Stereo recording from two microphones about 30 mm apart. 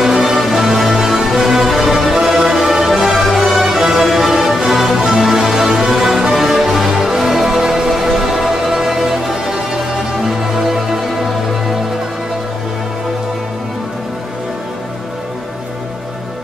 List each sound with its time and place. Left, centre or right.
0.0 s music: centre